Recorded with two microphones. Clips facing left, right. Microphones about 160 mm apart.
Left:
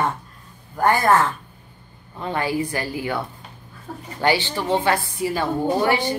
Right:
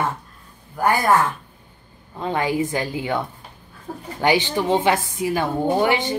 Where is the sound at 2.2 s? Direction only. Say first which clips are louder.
Right 2 dB; 15° right (ahead or behind).